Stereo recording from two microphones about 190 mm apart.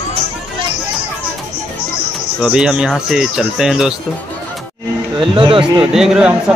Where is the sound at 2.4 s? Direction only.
5° right (ahead or behind).